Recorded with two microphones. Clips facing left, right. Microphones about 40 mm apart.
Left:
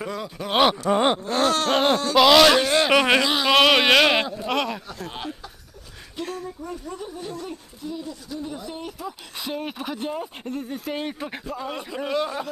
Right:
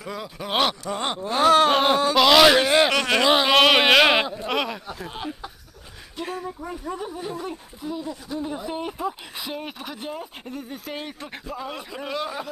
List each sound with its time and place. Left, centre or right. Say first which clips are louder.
0.1 s speech: even; centre
0.8 s a sound: left 7 dB; left
1.2 s speech: right 5 dB; centre
2.9 s speech: left 4 dB; centre
3.2 s speech: right 1 dB; centre
6.1 s speech: right 1 dB; centre
9.4 s speech: left 3 dB; centre